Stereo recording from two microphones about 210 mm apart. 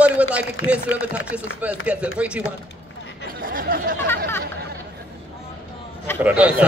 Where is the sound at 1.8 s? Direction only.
5° right (ahead or behind).